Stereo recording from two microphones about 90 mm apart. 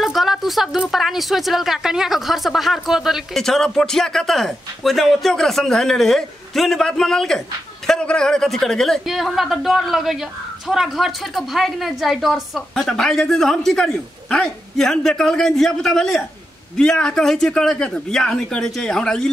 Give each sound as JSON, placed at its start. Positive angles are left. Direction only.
{"t": 0.0, "sound": "speech", "side_deg": 0}